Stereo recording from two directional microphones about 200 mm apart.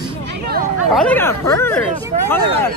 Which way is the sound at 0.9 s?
5° left (ahead or behind).